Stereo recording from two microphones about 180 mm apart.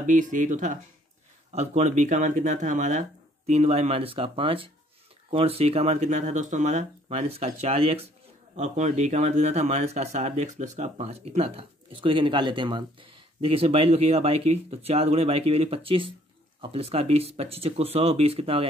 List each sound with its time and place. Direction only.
0.0 s speech: 45° right (ahead or behind)